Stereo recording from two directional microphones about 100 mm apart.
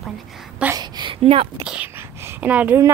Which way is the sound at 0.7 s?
45° right (ahead or behind).